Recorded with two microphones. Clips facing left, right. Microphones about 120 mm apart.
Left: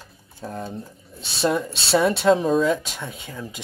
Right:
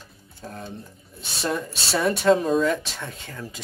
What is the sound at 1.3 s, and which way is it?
Speech, 30° left (ahead or behind).